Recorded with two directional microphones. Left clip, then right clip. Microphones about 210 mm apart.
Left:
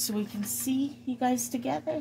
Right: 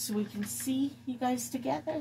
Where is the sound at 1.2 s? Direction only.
50° left (ahead or behind).